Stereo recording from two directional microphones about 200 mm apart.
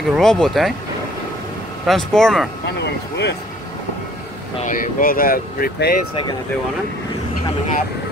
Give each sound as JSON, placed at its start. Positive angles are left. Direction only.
{"t": 0.1, "sound": "speech", "side_deg": 5}
{"t": 1.9, "sound": "speech", "side_deg": 0}
{"t": 2.6, "sound": "speech", "side_deg": 60}
{"t": 4.6, "sound": "speech", "side_deg": 45}